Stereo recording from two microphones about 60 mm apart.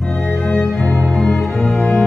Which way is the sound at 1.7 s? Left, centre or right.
Left.